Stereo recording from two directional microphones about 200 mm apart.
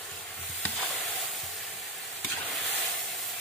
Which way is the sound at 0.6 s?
5° left (ahead or behind).